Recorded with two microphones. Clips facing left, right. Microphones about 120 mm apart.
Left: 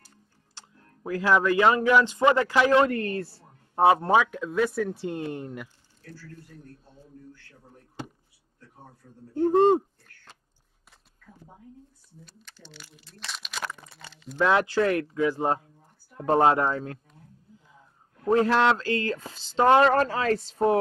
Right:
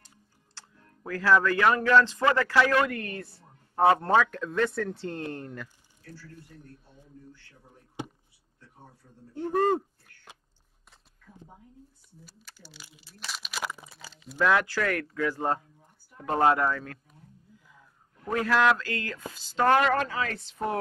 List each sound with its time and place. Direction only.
0.6 s speech: 15° left (ahead or behind)
2.9 s speech: 35° left (ahead or behind)
3.9 s speech: 10° left (ahead or behind)
9.5 s speech: 20° left (ahead or behind)
12.3 s speech: 5° right (ahead or behind)
14.4 s speech: 25° left (ahead or behind)
18.1 s speech: 30° left (ahead or behind)
19.8 s speech: 35° left (ahead or behind)